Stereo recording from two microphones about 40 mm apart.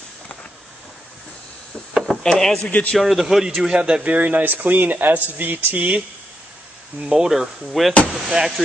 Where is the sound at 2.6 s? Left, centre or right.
Left.